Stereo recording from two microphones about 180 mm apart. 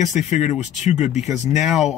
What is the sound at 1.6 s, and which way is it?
Speech, centre (ahead or behind).